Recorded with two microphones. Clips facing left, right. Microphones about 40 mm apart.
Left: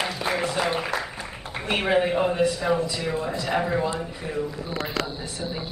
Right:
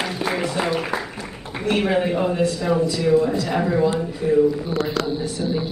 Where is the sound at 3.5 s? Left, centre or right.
Centre.